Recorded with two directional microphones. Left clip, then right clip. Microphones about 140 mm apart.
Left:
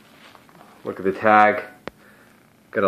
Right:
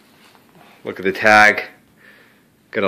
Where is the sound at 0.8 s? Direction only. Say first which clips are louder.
Right 4 dB; 40° right (ahead or behind).